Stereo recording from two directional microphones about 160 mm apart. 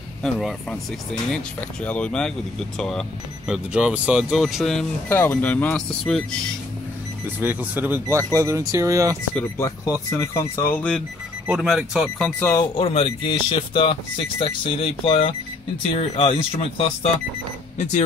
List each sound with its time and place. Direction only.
0.2 s speech: centre (ahead or behind)
5.1 s speech: 15° left (ahead or behind)
7.3 s speech: 10° right (ahead or behind)
9.3 s speech: 20° left (ahead or behind)
11.4 s speech: 5° right (ahead or behind)
12.3 s speech: 15° left (ahead or behind)
12.7 s speech: 35° left (ahead or behind)